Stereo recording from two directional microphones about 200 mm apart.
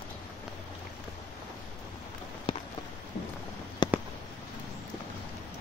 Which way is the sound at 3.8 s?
25° left (ahead or behind).